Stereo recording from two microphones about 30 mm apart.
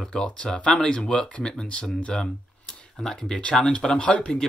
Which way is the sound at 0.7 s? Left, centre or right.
Left.